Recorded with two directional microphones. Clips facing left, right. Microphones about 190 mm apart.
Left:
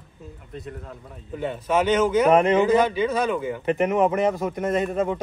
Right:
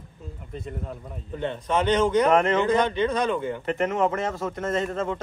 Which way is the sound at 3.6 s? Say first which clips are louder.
Left 6 dB; 15° left (ahead or behind).